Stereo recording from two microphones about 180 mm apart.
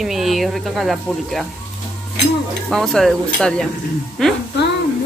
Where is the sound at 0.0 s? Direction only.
Centre (ahead or behind).